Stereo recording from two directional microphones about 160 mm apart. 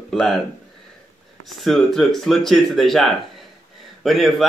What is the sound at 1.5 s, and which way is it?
Speech, centre (ahead or behind).